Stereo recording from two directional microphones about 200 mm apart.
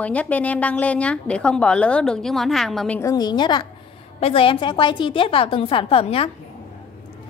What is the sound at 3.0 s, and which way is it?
A woman's voice, 20° left (ahead or behind).